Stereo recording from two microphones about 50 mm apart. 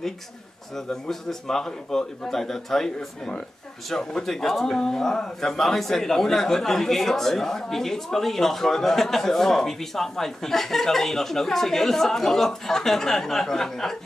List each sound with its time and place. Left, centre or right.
0.7 s speech: centre